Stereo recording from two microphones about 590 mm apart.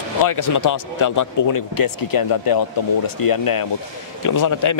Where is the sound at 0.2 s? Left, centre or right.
Left.